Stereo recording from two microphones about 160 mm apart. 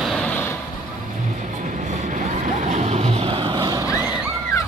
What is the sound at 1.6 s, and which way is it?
Vehicle, 50° right (ahead or behind).